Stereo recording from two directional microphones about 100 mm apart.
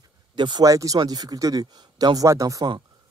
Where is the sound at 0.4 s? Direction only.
50° right (ahead or behind).